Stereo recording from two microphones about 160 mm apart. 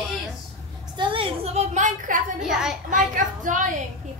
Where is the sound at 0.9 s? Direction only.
35° right (ahead or behind); by 2.5 s 55° right (ahead or behind).